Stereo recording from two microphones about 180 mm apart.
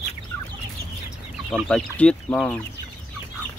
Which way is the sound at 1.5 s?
5° left (ahead or behind).